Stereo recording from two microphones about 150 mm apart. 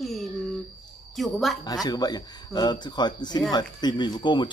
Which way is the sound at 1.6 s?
25° left (ahead or behind).